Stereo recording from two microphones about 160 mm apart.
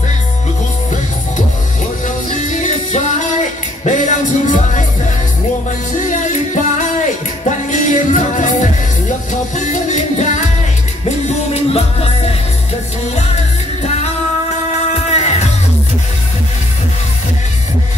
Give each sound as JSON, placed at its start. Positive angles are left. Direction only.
{"t": 2.0, "sound": "music", "side_deg": 50}
{"t": 5.9, "sound": "music", "side_deg": 50}
{"t": 13.8, "sound": "music", "side_deg": 45}